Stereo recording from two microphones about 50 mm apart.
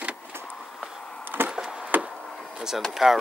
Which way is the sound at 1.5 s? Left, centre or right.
Centre.